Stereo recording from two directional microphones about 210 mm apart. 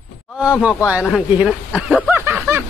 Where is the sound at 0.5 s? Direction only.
5° right (ahead or behind).